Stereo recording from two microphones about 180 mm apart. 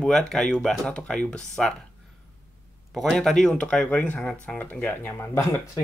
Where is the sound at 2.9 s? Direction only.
Centre (ahead or behind).